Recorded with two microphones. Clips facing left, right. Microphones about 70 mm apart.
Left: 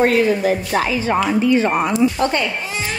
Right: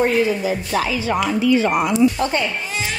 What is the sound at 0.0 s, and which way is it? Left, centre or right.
Speech, left.